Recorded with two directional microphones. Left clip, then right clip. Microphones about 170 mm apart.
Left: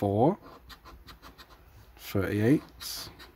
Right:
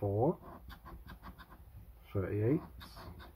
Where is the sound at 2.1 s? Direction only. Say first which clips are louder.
Left 8 dB; 65° left (ahead or behind).